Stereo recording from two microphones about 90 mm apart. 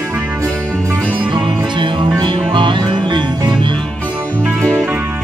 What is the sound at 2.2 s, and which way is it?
Music, 60° right (ahead or behind).